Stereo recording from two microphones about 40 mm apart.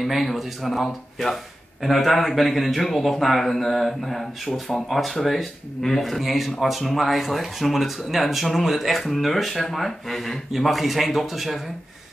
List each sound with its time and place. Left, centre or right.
0.0 s speech: centre